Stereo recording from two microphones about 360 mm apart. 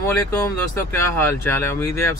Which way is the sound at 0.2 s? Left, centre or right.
Centre.